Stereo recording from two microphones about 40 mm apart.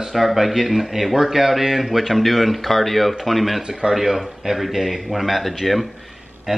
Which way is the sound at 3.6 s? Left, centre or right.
Centre.